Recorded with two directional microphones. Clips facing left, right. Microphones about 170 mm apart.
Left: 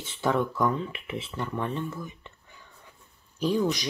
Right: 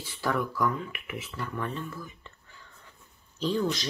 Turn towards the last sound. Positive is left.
turn(degrees=15)  # may be behind; listen again after turning